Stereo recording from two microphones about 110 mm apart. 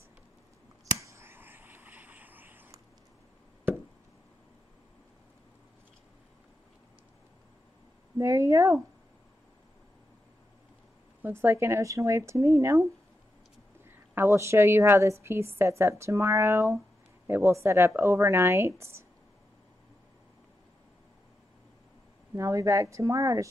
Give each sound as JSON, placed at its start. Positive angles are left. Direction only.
{"t": 0.9, "sound": "a sound", "side_deg": -25}
{"t": 8.2, "sound": "a woman's voice", "side_deg": -30}
{"t": 11.2, "sound": "a woman's voice", "side_deg": -20}
{"t": 22.3, "sound": "a woman's voice", "side_deg": -30}